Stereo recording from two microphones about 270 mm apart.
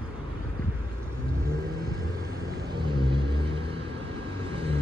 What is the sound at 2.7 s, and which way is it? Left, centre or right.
Vehicle, centre.